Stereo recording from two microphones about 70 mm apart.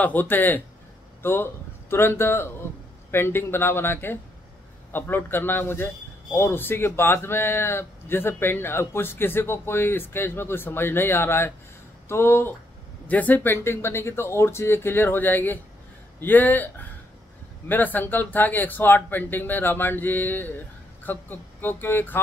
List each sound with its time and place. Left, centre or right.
0.0 s a man's voice: left
13.0 s a man's voice: left